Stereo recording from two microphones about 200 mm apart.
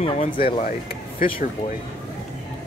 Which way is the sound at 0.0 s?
25° left (ahead or behind).